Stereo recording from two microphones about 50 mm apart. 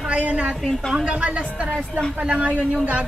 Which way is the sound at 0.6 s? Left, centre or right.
Centre.